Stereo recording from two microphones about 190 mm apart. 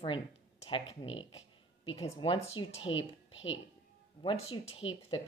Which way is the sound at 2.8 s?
85° left.